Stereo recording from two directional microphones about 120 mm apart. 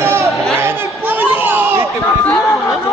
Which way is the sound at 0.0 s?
20° right (ahead or behind).